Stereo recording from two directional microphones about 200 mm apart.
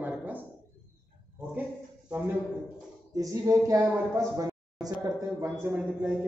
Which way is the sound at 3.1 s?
15° right (ahead or behind).